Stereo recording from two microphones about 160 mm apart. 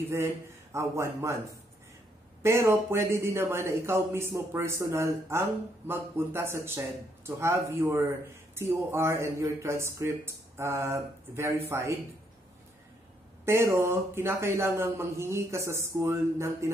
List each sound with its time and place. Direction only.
0.7 s speech: 15° right (ahead or behind)
13.5 s speech: 15° right (ahead or behind)